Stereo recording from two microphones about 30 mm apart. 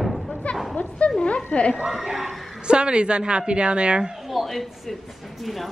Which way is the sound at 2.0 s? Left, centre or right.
Centre.